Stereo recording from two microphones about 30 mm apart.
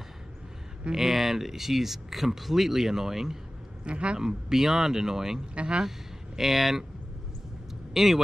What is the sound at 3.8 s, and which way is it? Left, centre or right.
Speech, right.